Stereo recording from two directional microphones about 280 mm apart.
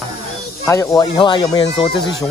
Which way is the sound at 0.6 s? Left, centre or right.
Centre.